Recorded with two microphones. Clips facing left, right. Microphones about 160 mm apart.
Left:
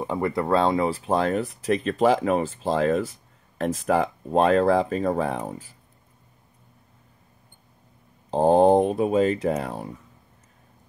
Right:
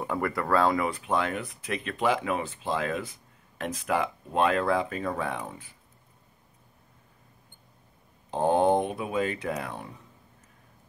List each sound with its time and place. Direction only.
0.0 s speech: 20° left (ahead or behind); by 5.8 s 40° left (ahead or behind)
8.3 s speech: 35° left (ahead or behind)